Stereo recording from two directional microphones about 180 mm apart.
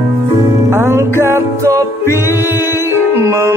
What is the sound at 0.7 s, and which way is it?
Music, 15° right (ahead or behind).